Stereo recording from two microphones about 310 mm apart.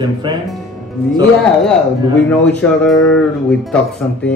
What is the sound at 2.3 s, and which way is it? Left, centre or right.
A man's voice, centre.